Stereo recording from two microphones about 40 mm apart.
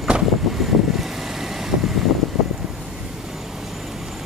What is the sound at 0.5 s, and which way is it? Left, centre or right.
Vehicle, centre.